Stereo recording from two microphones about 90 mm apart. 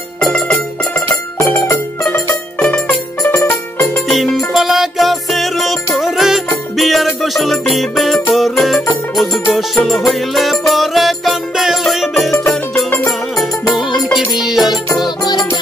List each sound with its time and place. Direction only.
0.9 s music: 30° left (ahead or behind)
2.6 s music: 15° left (ahead or behind)
4.1 s music: centre (ahead or behind)
14.1 s music: 5° right (ahead or behind)